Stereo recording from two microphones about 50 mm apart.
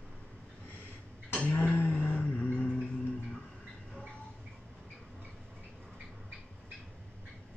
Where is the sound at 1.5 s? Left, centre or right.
Left.